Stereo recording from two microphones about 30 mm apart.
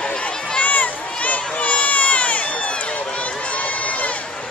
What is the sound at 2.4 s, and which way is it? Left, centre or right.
Run, left.